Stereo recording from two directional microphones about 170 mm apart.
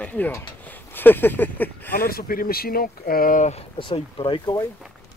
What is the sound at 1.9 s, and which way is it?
Speech, 60° left (ahead or behind).